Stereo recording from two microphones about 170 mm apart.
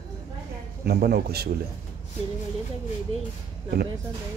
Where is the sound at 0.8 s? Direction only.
65° right (ahead or behind).